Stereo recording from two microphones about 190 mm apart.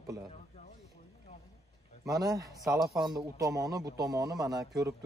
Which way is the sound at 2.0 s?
20° right (ahead or behind).